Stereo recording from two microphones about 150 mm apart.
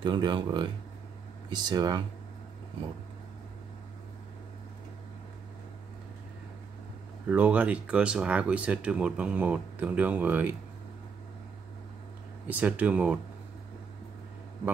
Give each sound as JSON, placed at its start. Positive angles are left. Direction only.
{"t": 0.0, "sound": "speech", "side_deg": -30}
{"t": 7.2, "sound": "speech", "side_deg": -10}
{"t": 12.4, "sound": "speech", "side_deg": -10}